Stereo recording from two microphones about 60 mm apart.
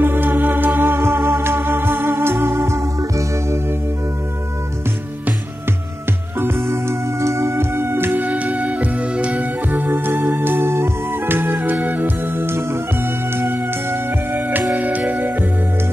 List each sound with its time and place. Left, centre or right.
0.0 s music: right
6.4 s music: right